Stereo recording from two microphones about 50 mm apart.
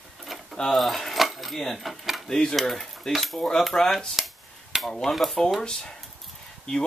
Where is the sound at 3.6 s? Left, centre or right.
Centre.